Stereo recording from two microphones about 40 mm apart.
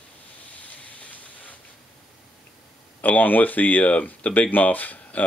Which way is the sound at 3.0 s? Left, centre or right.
Left.